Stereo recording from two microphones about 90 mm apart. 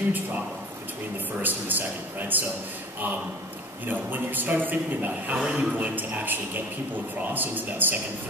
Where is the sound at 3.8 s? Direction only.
20° right (ahead or behind).